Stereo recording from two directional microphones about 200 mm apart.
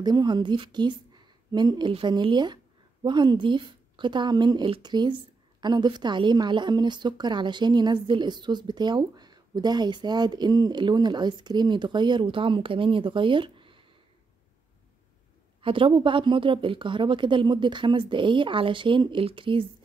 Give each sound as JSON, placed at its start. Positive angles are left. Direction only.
{"t": 0.0, "sound": "a woman's voice", "side_deg": -20}
{"t": 15.6, "sound": "a woman's voice", "side_deg": -25}